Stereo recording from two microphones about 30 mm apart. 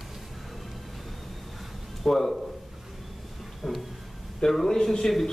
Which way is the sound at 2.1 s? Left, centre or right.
Centre.